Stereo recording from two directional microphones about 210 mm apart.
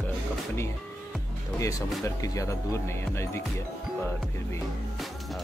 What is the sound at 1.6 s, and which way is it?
Speech, 15° left (ahead or behind).